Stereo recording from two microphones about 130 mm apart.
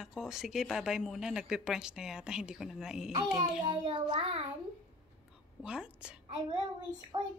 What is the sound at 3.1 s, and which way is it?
A child's voice, 35° right (ahead or behind).